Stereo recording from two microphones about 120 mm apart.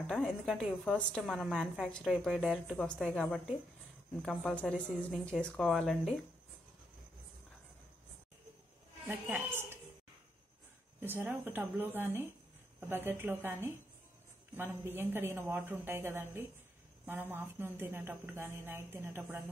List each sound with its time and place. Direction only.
0.1 s speech: centre (ahead or behind)
4.2 s speech: 5° left (ahead or behind)
9.0 s a woman's voice: 15° right (ahead or behind)
11.0 s a woman's voice: 15° right (ahead or behind)